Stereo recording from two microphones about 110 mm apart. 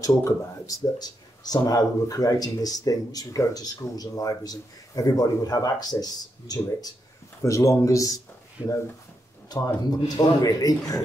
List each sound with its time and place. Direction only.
0.0 s speech: 30° left (ahead or behind)
8.6 s speech: 15° right (ahead or behind)
9.5 s speech: 35° left (ahead or behind)